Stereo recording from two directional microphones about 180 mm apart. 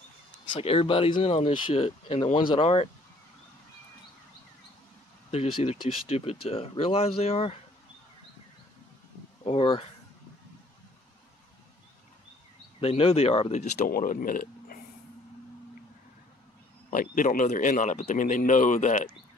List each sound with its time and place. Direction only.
0.5 s speech: 30° left (ahead or behind)
5.3 s speech: 35° left (ahead or behind)
9.4 s speech: 30° left (ahead or behind)
12.8 s speech: 35° left (ahead or behind); by 14.8 s 50° left (ahead or behind)
16.9 s speech: 50° left (ahead or behind)